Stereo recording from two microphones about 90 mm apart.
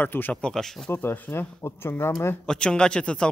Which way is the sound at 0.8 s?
25° left (ahead or behind).